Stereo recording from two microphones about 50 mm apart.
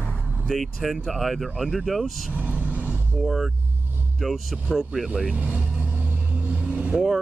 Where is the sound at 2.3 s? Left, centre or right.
Right.